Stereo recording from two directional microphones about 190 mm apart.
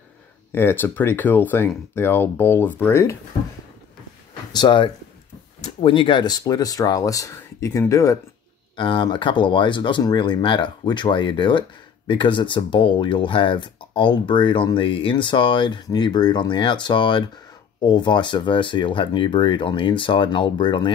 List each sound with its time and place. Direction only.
0.5 s speech: 10° left (ahead or behind)
4.5 s speech: 25° left (ahead or behind)